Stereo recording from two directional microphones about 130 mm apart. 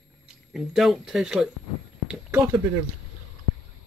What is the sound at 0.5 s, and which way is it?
Speech, centre (ahead or behind).